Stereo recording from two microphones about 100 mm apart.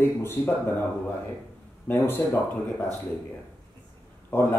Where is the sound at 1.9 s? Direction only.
20° left (ahead or behind).